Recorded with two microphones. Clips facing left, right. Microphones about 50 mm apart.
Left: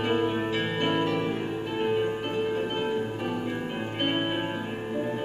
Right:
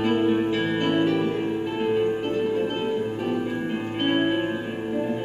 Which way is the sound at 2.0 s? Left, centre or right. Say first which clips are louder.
Right 4 dB; centre.